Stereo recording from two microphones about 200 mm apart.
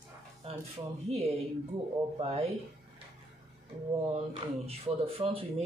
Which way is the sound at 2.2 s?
30° right (ahead or behind).